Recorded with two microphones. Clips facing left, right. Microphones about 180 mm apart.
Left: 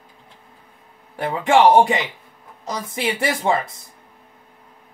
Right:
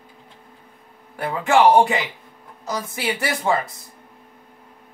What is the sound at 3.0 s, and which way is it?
Speech, 25° left (ahead or behind).